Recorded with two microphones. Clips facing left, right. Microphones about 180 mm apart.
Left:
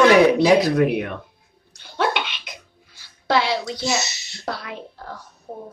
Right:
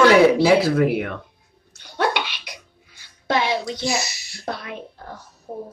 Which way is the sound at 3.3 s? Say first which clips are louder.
Left 1 dB; 20° right (ahead or behind).